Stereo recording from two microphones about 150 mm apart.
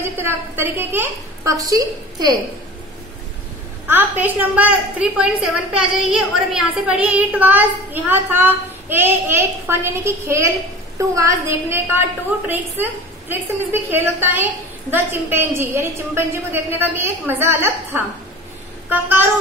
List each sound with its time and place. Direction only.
0.2 s a woman's voice: 15° right (ahead or behind)
3.8 s a woman's voice: 15° right (ahead or behind)